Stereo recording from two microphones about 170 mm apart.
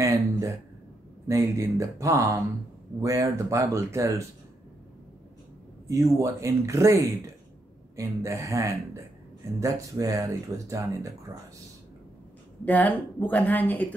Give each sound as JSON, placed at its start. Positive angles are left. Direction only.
{"t": 0.0, "sound": "speech", "side_deg": -20}
{"t": 6.1, "sound": "speech", "side_deg": -15}
{"t": 12.6, "sound": "speech", "side_deg": 10}